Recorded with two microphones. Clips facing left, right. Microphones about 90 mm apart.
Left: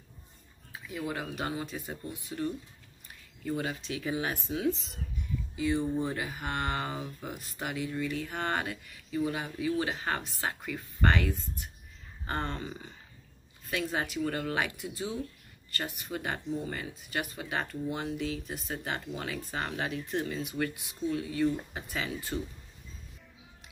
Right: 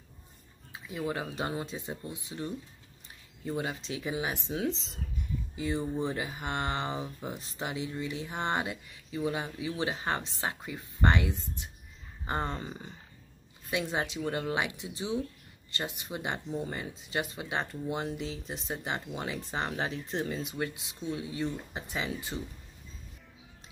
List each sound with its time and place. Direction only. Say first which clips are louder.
0.7 s speech: right 1 dB; 25° right (ahead or behind)
13.7 s speech: right 1 dB; 20° right (ahead or behind)